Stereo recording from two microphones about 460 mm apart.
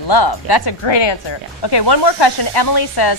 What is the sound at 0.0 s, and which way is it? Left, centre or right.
Speech, left.